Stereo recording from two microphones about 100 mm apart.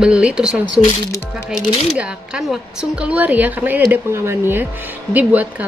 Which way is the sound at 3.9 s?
25° right (ahead or behind).